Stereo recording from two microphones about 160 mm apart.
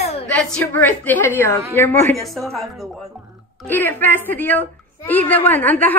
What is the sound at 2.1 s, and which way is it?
Speech, centre (ahead or behind).